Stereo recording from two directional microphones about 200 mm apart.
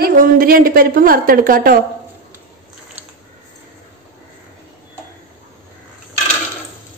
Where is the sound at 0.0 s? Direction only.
45° right (ahead or behind).